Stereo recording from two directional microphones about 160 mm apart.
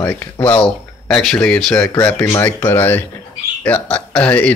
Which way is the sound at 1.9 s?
20° left (ahead or behind).